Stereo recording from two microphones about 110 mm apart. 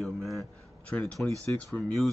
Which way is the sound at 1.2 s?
15° left (ahead or behind).